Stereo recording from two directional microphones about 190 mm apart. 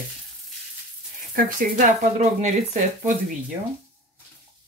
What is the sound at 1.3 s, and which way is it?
Speech, 45° right (ahead or behind).